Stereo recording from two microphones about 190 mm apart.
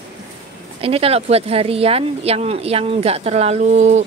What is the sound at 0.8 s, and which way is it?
Speech, 30° right (ahead or behind).